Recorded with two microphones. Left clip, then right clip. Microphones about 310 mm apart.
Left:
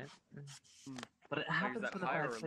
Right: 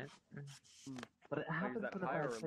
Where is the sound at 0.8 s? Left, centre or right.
Centre.